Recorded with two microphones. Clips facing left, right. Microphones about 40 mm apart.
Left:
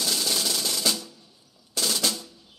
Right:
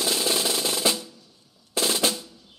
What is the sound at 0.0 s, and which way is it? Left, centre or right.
Drum roll, right.